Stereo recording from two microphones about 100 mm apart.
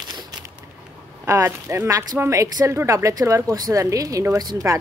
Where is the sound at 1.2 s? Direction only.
30° right (ahead or behind).